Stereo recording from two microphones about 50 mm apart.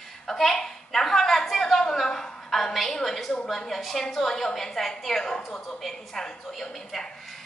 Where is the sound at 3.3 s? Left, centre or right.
Centre.